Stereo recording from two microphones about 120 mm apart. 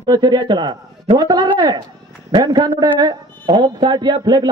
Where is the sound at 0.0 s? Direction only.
35° right (ahead or behind).